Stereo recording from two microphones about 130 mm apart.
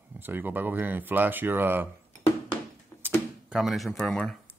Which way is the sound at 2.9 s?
25° left (ahead or behind).